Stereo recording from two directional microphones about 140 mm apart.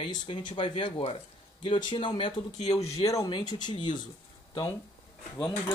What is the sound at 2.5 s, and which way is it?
Speech, 55° left (ahead or behind).